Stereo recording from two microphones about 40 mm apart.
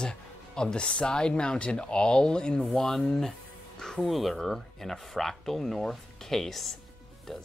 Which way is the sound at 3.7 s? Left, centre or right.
Centre.